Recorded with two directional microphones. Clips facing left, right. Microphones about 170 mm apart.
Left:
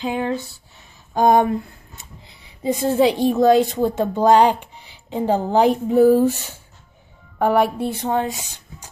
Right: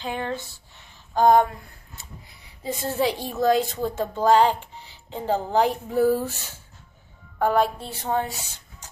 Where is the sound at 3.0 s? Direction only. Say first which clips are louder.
Left 8 dB; 20° left (ahead or behind).